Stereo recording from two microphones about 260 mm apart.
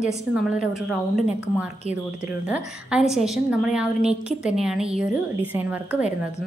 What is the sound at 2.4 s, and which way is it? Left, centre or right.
A woman's voice, centre.